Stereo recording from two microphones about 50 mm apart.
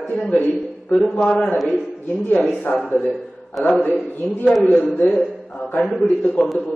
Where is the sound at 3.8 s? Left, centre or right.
Left.